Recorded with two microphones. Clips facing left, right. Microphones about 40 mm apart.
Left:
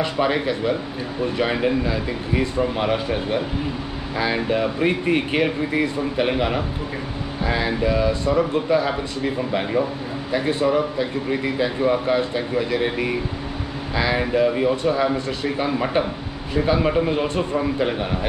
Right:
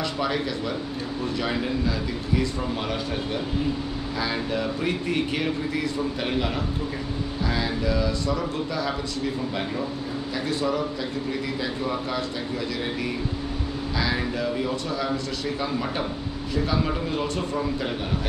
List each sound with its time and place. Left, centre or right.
0.0 s speech: left